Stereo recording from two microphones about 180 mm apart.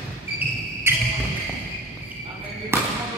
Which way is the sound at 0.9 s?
15° right (ahead or behind).